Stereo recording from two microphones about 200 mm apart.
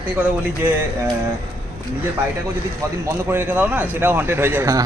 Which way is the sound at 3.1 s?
10° right (ahead or behind).